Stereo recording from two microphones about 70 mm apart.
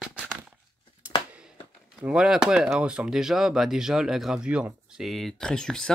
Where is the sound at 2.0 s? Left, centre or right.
Centre.